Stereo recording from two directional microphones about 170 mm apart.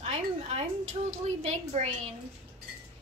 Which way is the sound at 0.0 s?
40° right (ahead or behind).